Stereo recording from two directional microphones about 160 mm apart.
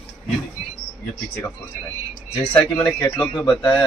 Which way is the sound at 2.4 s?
10° left (ahead or behind).